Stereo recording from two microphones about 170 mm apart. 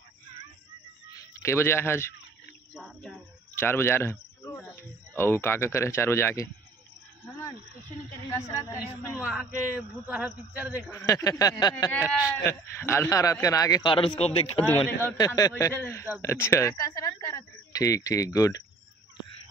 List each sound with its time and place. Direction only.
1.4 s speech: 15° left (ahead or behind)
2.7 s a sound: 5° left (ahead or behind)
3.5 s speech: 15° left (ahead or behind)
8.3 s speech: 15° left (ahead or behind)
9.2 s speech: 5° right (ahead or behind)
10.9 s speech: 20° left (ahead or behind)
13.9 s a man's voice: 35° left (ahead or behind)
15.1 s speech: 20° left (ahead or behind)